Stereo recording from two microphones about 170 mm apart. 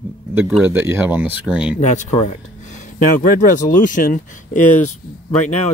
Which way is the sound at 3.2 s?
50° left (ahead or behind).